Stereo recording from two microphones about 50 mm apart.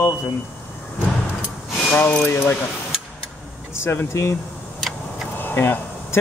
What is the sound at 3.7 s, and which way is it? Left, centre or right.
Speech, left.